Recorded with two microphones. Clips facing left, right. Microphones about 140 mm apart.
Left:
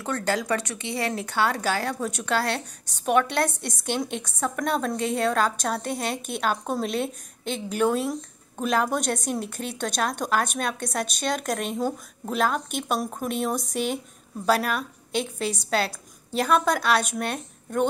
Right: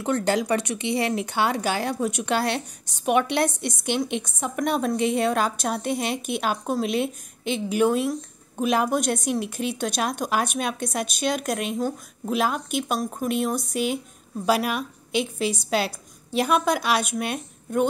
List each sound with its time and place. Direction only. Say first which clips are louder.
0.0 s a woman's voice: right 4 dB; 20° right (ahead or behind)